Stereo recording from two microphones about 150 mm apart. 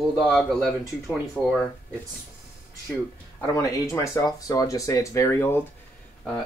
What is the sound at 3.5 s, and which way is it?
Speech, 20° left (ahead or behind).